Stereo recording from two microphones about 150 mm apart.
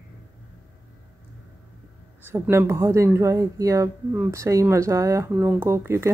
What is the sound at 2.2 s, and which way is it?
Speech, 15° right (ahead or behind).